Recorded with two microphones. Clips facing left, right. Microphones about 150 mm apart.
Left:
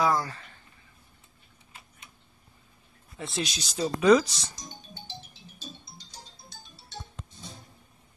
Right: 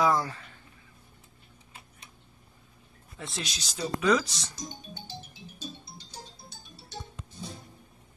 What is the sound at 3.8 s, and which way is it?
Speech, 25° left (ahead or behind).